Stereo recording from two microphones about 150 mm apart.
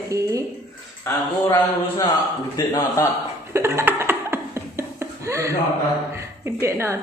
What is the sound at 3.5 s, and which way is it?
Laughter, 15° right (ahead or behind).